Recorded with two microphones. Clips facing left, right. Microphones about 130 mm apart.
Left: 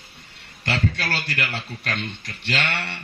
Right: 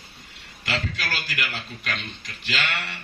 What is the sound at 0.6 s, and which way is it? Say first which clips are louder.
A man's voice: left 4 dB; 30° left (ahead or behind).